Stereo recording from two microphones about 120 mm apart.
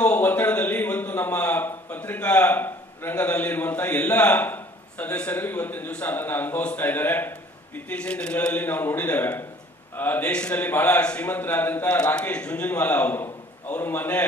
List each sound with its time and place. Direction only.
0.0 s speech: 15° left (ahead or behind)